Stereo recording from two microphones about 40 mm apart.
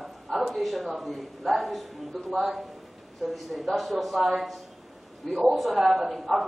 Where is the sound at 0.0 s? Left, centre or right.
Centre.